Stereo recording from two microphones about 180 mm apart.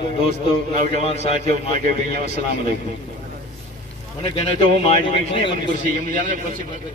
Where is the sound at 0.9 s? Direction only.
35° left (ahead or behind).